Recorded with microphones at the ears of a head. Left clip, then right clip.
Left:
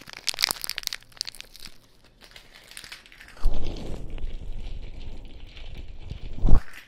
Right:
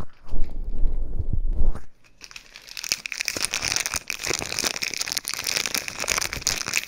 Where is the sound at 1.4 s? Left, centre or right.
Right.